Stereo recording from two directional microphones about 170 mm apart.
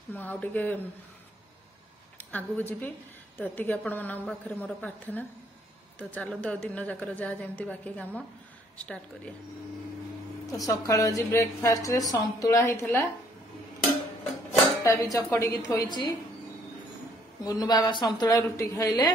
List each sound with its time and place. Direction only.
0.1 s a woman's voice: 10° left (ahead or behind)
2.1 s a woman's voice: 10° left (ahead or behind)
10.6 s a woman's voice: 20° left (ahead or behind)
14.8 s a woman's voice: 15° left (ahead or behind)
17.4 s a woman's voice: 20° left (ahead or behind)